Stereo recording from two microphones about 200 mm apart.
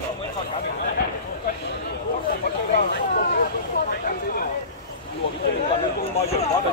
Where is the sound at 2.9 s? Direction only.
50° left (ahead or behind).